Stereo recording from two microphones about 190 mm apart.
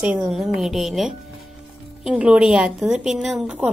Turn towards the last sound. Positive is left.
turn(degrees=-5)  # may be behind; listen again after turning